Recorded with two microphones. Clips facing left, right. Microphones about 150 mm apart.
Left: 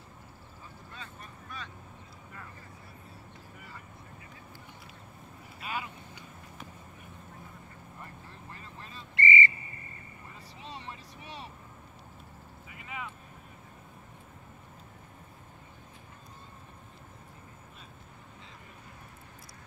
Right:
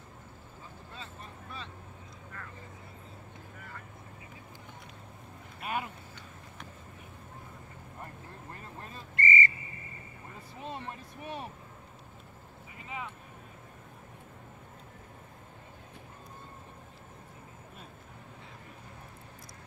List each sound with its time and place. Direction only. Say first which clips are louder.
0.9 s vehicle: right 1 dB; 30° right (ahead or behind)
5.6 s vehicle: right 3 dB; 55° right (ahead or behind)
8.5 s a sound: right 2 dB; 50° right (ahead or behind)
10.6 s vehicle: right 4 dB; 50° right (ahead or behind)
12.8 s vehicle: right 1 dB; 30° right (ahead or behind)